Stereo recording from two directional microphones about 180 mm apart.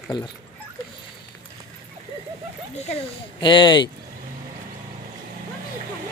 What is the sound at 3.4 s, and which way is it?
Speech, 25° left (ahead or behind).